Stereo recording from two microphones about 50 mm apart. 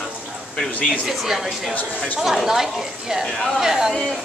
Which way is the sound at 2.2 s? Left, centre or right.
Centre.